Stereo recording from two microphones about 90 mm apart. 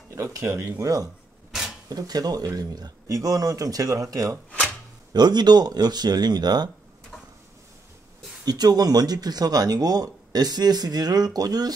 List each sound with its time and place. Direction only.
0.1 s speech: 30° right (ahead or behind)
5.1 s speech: 50° right (ahead or behind)
8.5 s speech: 45° right (ahead or behind)